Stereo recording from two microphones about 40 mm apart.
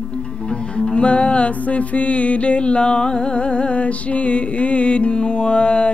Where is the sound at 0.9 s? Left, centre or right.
Left.